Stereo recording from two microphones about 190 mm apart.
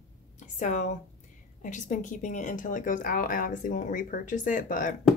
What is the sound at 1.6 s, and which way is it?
Speech, 40° left (ahead or behind).